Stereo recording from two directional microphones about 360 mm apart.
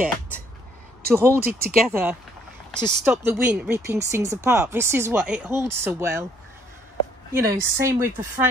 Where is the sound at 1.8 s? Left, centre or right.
Centre.